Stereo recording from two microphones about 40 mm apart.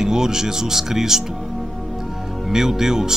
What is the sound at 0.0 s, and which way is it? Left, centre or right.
Speech, centre.